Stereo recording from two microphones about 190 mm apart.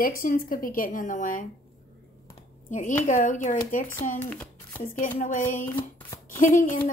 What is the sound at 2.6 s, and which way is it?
A woman's voice, 40° left (ahead or behind).